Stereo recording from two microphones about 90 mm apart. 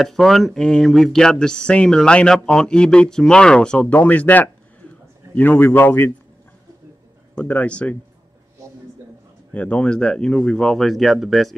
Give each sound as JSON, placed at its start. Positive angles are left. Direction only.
{"t": 0.0, "sound": "a man's voice", "side_deg": 5}
{"t": 7.3, "sound": "speech", "side_deg": 15}
{"t": 9.5, "sound": "speech", "side_deg": 15}